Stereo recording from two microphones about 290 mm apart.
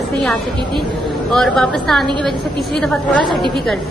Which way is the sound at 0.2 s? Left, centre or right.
Centre.